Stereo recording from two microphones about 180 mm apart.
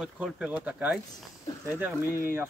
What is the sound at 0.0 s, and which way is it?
Speech, 5° right (ahead or behind).